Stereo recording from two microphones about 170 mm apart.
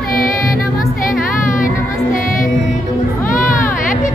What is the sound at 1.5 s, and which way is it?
Music, 50° left (ahead or behind).